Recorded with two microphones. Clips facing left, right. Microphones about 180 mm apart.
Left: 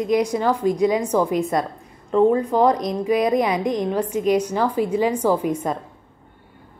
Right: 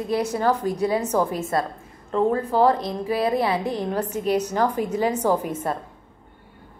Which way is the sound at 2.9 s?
15° left (ahead or behind).